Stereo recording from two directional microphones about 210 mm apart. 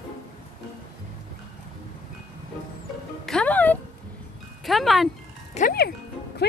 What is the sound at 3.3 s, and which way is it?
Music, 5° left (ahead or behind).